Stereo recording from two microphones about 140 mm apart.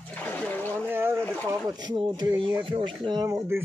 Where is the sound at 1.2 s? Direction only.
10° left (ahead or behind).